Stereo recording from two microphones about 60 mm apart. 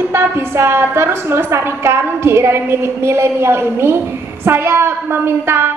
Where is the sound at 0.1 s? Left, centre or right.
Right.